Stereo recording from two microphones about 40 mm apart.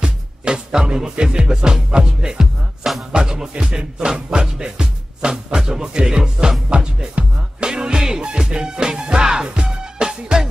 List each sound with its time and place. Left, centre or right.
0.0 s music: right